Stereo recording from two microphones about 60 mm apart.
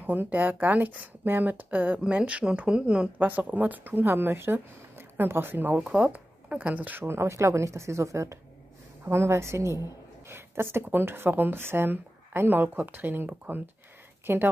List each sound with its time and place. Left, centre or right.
0.0 s speech: right
5.8 s speech: centre
7.1 s speech: right